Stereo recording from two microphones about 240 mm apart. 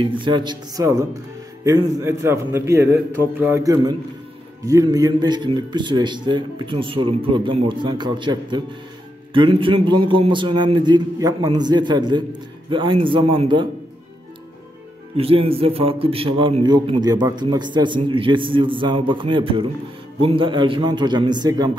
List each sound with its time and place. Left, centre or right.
0.0 s a man's voice: centre
15.1 s a man's voice: right